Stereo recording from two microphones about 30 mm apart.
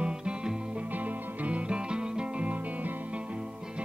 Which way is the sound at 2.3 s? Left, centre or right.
Right.